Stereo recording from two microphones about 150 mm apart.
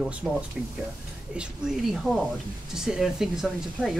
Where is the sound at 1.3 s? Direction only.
5° right (ahead or behind).